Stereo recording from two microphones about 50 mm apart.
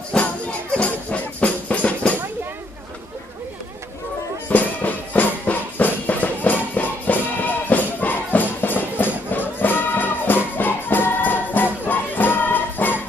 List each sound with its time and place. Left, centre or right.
0.2 s music: left
4.5 s music: left